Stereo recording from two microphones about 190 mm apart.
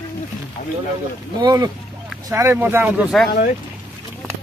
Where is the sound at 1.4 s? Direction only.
20° right (ahead or behind); by 3.3 s centre (ahead or behind).